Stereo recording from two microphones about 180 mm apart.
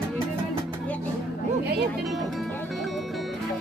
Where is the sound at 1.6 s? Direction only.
65° right (ahead or behind).